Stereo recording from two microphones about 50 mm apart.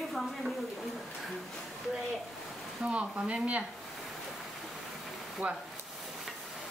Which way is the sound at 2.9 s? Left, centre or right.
Right.